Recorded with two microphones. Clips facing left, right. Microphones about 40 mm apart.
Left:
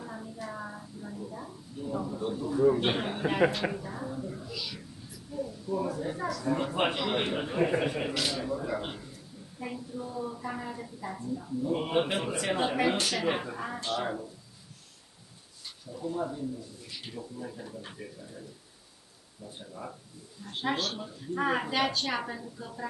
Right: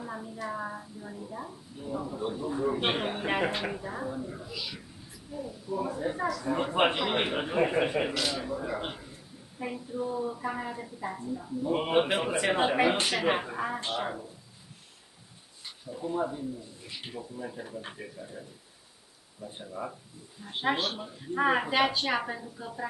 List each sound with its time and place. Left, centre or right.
0.0 s a woman's voice: centre
6.2 s a woman's voice: centre
8.1 s a woman's voice: centre
15.6 s speech: centre
19.4 s a woman's voice: centre